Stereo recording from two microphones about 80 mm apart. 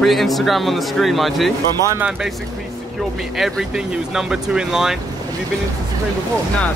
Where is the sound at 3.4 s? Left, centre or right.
Centre.